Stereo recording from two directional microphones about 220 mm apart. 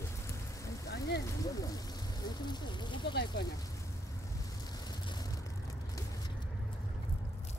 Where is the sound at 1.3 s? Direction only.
15° left (ahead or behind).